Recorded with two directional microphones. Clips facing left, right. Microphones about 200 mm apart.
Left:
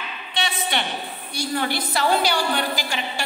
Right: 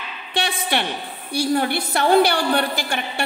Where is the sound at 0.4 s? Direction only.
55° right (ahead or behind).